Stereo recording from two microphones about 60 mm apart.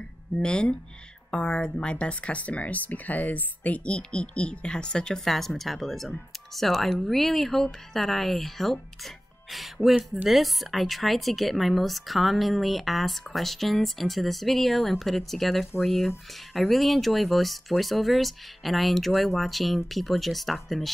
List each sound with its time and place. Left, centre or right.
0.4 s speech: centre